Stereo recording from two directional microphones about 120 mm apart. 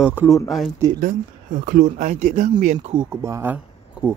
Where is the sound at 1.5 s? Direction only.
90° right.